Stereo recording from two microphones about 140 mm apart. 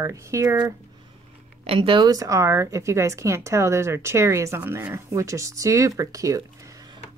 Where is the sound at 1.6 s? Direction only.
35° right (ahead or behind).